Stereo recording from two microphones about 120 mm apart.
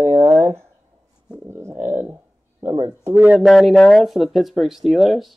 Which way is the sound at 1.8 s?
20° right (ahead or behind).